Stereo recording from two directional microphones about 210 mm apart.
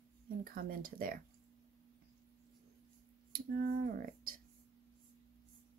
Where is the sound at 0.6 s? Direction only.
45° right (ahead or behind).